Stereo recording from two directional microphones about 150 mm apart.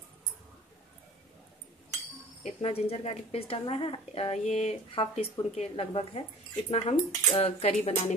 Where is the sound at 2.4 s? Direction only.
40° left (ahead or behind).